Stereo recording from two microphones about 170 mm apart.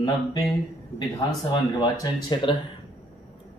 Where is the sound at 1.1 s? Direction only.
20° left (ahead or behind).